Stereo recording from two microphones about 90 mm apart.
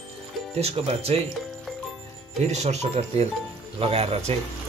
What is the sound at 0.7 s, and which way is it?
Speech, 90° right.